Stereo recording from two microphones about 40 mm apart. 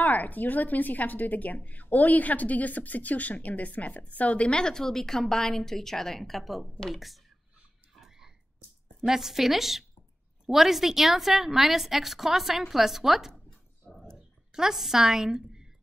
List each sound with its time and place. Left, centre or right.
0.0 s a woman's voice: left; by 7.2 s centre
9.0 s a woman's voice: centre
13.9 s a sound: centre
14.5 s a woman's voice: centre